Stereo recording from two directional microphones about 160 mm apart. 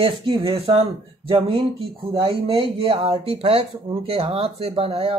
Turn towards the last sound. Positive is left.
turn(degrees=-35)  # may be behind; listen again after turning